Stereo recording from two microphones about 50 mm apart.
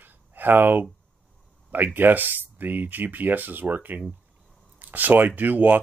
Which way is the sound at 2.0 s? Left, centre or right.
Right.